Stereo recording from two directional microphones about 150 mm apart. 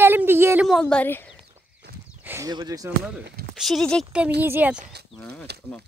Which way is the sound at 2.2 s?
15° right (ahead or behind).